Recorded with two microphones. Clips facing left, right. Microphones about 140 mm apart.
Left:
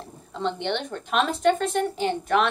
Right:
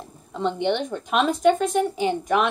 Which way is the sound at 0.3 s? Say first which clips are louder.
Right 4 dB; 10° right (ahead or behind).